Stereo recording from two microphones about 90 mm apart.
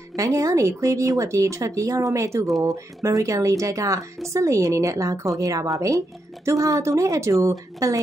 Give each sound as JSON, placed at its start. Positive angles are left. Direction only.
{"t": 0.1, "sound": "speech", "side_deg": -35}